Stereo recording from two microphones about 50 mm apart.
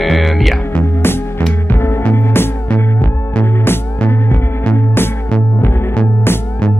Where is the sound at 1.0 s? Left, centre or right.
Left.